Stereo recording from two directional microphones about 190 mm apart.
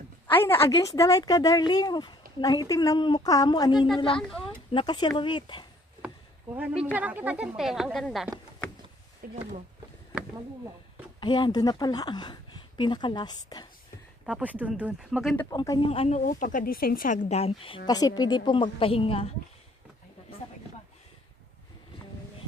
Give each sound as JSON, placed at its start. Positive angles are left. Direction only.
{"t": 0.7, "sound": "speech", "side_deg": 15}
{"t": 6.0, "sound": "speech", "side_deg": -5}
{"t": 9.2, "sound": "speech", "side_deg": -50}
{"t": 11.1, "sound": "speech", "side_deg": 25}
{"t": 14.2, "sound": "speech", "side_deg": -5}
{"t": 15.5, "sound": "speech", "side_deg": 20}
{"t": 15.9, "sound": "speech", "side_deg": 30}
{"t": 16.3, "sound": "speech", "side_deg": 45}